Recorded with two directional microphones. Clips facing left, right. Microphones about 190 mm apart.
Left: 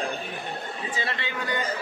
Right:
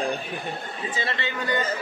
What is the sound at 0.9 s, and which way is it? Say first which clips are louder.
Speech: right 3 dB; 10° left (ahead or behind).